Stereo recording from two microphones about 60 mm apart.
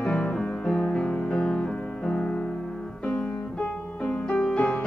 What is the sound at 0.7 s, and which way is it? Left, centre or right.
Music, centre.